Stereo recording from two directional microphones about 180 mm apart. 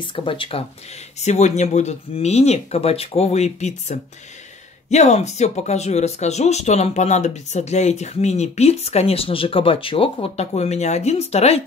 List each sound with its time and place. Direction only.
0.0 s speech: 30° left (ahead or behind)